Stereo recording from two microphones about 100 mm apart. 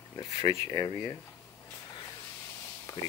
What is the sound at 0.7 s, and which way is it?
Speech, 55° left (ahead or behind).